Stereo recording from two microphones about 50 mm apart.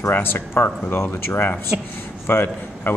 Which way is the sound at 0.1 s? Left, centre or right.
Left.